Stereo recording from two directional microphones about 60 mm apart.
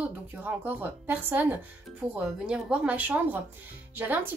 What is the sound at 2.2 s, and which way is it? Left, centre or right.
A woman's voice, centre.